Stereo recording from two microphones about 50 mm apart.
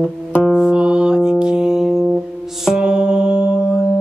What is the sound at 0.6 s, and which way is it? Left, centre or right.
Music, centre.